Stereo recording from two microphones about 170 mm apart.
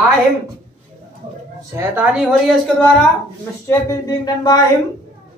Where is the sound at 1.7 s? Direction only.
15° right (ahead or behind).